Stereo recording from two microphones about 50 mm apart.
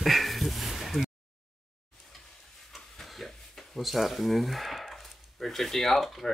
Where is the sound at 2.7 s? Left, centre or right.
Centre.